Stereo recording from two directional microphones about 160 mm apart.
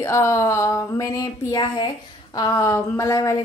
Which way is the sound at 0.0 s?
20° left (ahead or behind).